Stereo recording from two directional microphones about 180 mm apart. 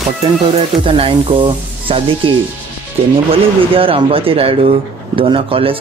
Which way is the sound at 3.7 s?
30° right (ahead or behind).